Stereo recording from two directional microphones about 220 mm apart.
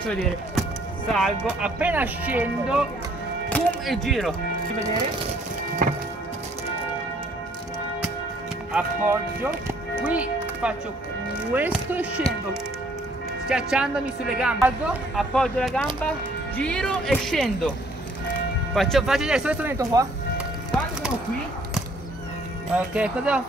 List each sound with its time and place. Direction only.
1.0 s a woman's voice: centre (ahead or behind)
5.8 s music: 40° right (ahead or behind)
8.7 s speech: 10° right (ahead or behind)
9.9 s music: 5° right (ahead or behind)
11.5 s speech: 10° right (ahead or behind)
13.5 s a woman's voice: 5° right (ahead or behind)
18.8 s a woman's voice: centre (ahead or behind); by 20.1 s 15° right (ahead or behind)
22.8 s a woman's voice: 5° right (ahead or behind)